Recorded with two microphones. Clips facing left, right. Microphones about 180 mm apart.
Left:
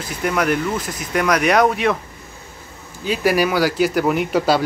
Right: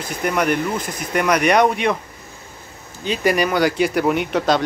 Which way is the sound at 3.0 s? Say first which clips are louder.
Left 1 dB; 5° left (ahead or behind).